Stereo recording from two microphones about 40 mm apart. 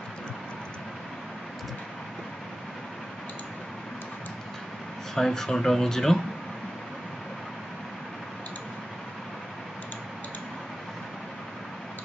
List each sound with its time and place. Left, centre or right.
5.1 s speech: centre